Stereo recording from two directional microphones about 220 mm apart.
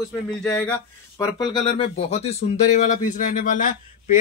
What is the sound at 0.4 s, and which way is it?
Speech, 10° left (ahead or behind).